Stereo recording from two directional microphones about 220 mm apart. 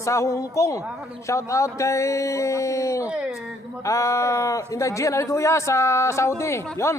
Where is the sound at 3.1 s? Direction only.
5° right (ahead or behind).